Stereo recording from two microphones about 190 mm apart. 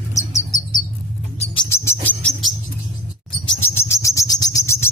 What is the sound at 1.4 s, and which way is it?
Bird, 25° left (ahead or behind).